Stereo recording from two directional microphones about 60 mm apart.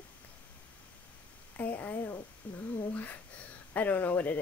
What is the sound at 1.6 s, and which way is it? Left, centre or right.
Speech, left.